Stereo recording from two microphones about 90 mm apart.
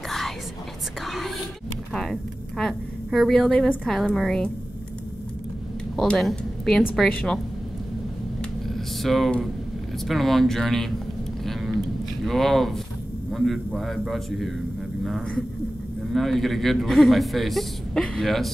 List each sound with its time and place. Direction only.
1.0 s a man's voice: centre (ahead or behind)
5.9 s speech: 5° left (ahead or behind)
7.1 s a woman's voice: 15° left (ahead or behind)
8.4 s a sound: centre (ahead or behind)
10.0 s a man's voice: centre (ahead or behind)
12.3 s a man's voice: centre (ahead or behind)
16.1 s a man's voice: centre (ahead or behind)